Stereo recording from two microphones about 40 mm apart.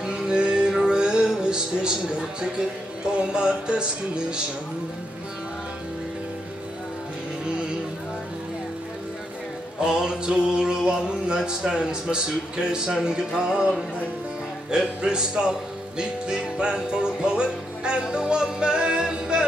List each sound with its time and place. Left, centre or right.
0.1 s music: right
9.8 s music: centre